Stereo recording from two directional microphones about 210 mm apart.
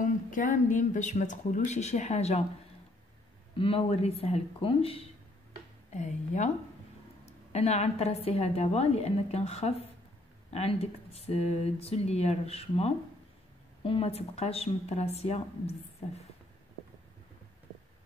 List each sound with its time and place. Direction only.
0.0 s a woman's voice: 40° left (ahead or behind)
3.5 s a woman's voice: 25° left (ahead or behind)